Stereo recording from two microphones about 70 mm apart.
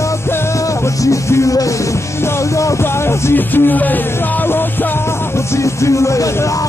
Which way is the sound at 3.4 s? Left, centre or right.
Left.